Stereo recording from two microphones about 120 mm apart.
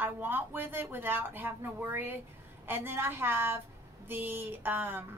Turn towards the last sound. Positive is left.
turn(degrees=-15)  # may be behind; listen again after turning